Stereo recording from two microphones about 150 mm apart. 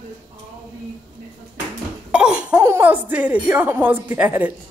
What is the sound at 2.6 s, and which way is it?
A woman's voice, 15° right (ahead or behind).